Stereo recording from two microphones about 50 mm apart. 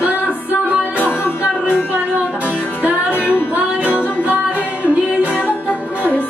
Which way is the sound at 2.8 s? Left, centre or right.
Right.